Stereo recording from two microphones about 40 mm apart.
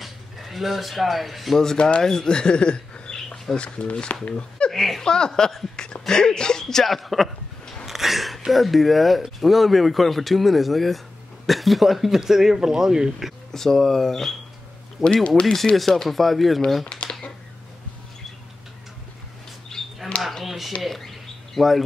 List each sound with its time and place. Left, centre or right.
0.0 s speech: centre
1.8 s speech: left
4.1 s speech: left
4.4 s a sound: left
4.7 s speech: centre
5.0 s speech: centre
7.8 s a sound: centre
8.5 s speech: centre
13.5 s speech: centre
15.2 s speech: left
15.5 s speech: centre
17.0 s a sound: left
19.7 s a sound: centre
20.8 s bird: centre